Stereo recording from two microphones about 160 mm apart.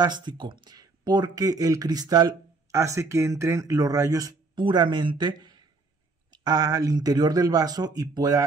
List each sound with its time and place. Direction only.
0.0 s speech: 25° right (ahead or behind)